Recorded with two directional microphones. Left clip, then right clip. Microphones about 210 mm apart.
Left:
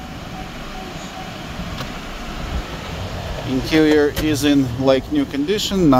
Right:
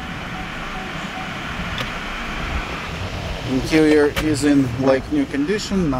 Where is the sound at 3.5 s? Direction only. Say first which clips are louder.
Even; centre (ahead or behind); by 5.8 s 15° left (ahead or behind).